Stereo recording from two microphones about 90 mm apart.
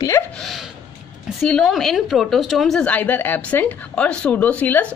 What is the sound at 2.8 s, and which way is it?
A woman's voice, 20° left (ahead or behind).